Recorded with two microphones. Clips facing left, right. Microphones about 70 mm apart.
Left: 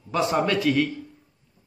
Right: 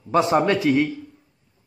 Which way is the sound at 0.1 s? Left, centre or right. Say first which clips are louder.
Right 4 dB; right.